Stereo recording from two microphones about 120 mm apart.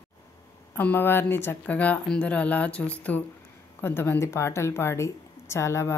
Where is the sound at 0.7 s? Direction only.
15° left (ahead or behind).